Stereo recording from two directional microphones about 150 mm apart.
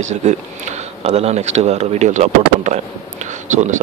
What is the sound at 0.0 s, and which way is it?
Speech, 50° right (ahead or behind).